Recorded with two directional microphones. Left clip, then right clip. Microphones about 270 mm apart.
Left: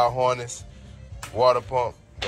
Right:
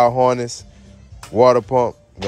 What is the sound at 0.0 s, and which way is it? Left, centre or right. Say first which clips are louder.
Speech: right 7 dB; right.